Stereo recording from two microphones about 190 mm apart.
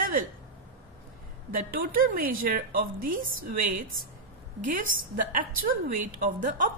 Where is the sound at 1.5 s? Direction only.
50° right (ahead or behind).